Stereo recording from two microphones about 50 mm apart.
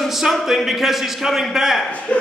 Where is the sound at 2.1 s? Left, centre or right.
Left.